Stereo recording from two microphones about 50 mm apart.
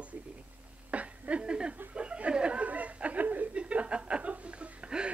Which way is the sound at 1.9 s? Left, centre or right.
Right.